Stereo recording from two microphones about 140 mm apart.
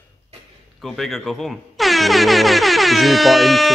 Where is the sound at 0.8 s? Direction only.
Centre (ahead or behind).